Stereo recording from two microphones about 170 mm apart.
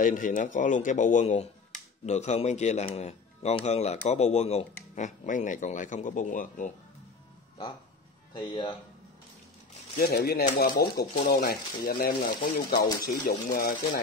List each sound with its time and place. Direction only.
0.0 s a man's voice: 55° left (ahead or behind)
8.4 s speech: 30° left (ahead or behind)
9.9 s speech: 65° left (ahead or behind)